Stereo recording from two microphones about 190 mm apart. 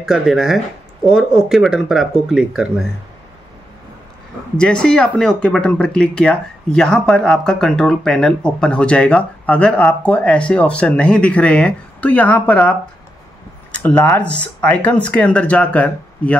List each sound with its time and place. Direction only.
0.0 s speech: centre (ahead or behind)
4.6 s speech: 5° left (ahead or behind)